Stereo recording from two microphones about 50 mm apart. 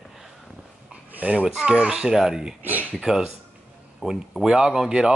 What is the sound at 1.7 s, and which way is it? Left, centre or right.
Speech, centre.